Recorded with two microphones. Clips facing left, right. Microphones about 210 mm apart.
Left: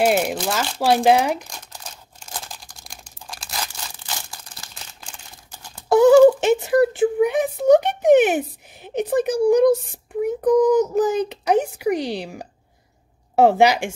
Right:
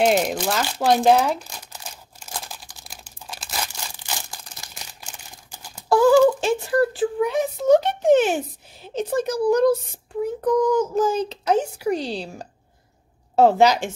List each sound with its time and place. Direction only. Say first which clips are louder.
0.0 s speech: even; 5° left (ahead or behind)
1.7 s crumpling: even; 5° right (ahead or behind)
5.0 s crumpling: even; 10° right (ahead or behind)
5.9 s a sound: left 4 dB; 20° left (ahead or behind)
10.2 s a child's voice: left 4 dB; 15° left (ahead or behind)